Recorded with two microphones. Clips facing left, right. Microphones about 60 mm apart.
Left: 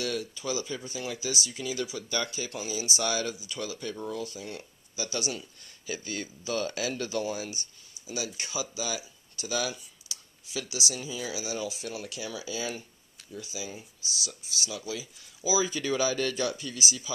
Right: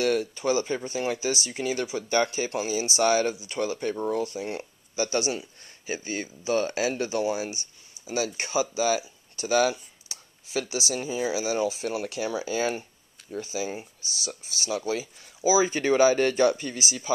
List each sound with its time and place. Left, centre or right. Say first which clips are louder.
0.0 s speech: right 8 dB; right